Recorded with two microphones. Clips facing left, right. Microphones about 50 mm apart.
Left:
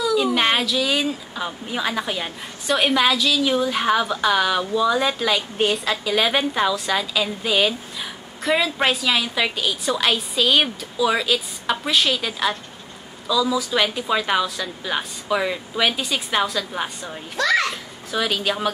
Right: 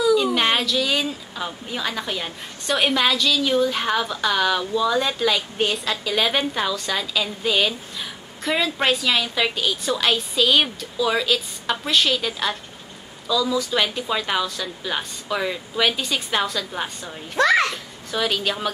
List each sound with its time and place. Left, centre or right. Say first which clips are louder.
0.0 s speech: right 1 dB; centre
17.4 s a child's voice: right 2 dB; right
17.6 s speech: left 1 dB; centre